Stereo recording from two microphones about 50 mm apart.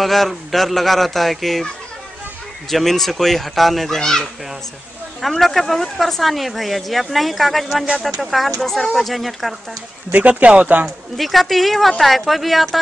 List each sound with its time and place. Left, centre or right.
0.0 s speech: centre
2.7 s speech: centre
10.1 s speech: right
11.1 s speech: centre